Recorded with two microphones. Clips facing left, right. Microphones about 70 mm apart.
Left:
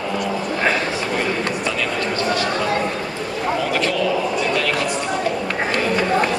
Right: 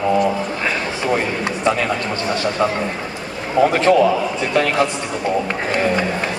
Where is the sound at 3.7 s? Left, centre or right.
Right.